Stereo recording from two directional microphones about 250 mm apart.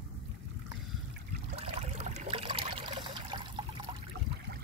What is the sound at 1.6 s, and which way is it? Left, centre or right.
Trickle, right.